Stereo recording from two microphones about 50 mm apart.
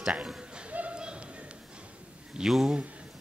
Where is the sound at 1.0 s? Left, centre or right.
Centre.